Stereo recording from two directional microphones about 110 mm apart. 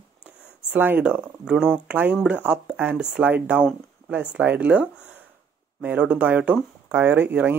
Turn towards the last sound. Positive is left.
turn(degrees=-15)  # may be behind; listen again after turning